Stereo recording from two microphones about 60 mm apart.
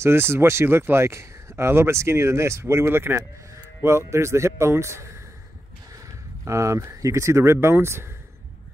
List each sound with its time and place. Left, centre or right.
0.0 s speech: right
3.2 s speech: right